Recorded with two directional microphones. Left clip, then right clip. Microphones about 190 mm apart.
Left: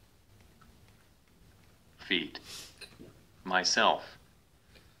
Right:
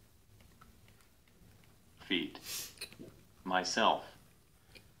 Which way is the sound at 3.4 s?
5° left (ahead or behind).